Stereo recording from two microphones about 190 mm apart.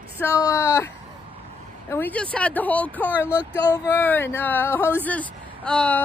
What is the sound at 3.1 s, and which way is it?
Speech, 10° right (ahead or behind).